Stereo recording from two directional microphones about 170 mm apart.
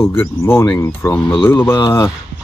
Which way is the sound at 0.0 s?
15° left (ahead or behind).